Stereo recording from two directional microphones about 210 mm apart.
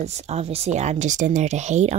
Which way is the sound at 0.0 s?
30° right (ahead or behind).